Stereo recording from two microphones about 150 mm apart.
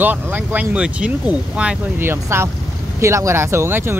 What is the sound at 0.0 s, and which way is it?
Speech, 10° right (ahead or behind).